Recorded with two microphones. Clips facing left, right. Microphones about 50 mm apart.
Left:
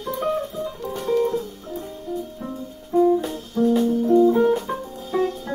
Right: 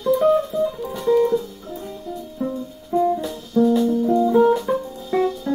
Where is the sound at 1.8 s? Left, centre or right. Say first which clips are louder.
Left 3 dB; left.